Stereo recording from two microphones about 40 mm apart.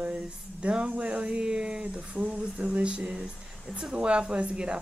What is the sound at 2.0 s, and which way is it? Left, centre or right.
Speech, right.